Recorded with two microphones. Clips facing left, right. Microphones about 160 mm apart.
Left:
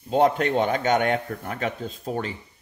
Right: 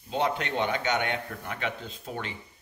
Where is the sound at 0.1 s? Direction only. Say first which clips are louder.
Left 8 dB; 45° left (ahead or behind).